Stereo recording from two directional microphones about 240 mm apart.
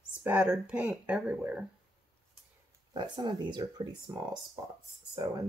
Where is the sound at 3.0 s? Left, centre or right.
Centre.